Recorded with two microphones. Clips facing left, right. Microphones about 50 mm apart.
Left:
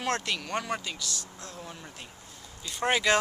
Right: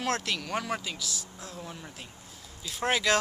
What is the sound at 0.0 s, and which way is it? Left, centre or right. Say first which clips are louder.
Speech: even; centre.